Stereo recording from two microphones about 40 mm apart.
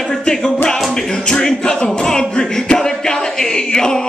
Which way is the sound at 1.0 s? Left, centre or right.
Centre.